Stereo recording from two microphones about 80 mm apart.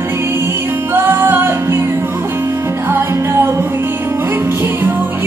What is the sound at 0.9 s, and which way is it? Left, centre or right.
Music, right.